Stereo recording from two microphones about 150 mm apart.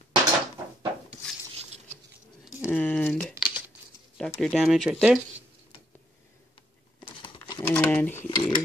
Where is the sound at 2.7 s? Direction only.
10° left (ahead or behind).